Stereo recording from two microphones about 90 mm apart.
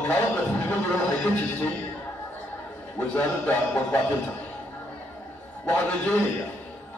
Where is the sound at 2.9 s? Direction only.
20° left (ahead or behind).